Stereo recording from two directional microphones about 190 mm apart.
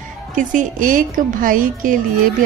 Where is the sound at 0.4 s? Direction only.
40° right (ahead or behind).